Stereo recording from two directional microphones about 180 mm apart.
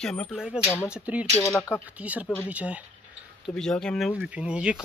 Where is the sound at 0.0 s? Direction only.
5° left (ahead or behind).